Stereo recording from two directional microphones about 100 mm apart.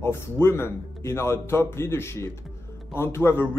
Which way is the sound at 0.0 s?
25° left (ahead or behind).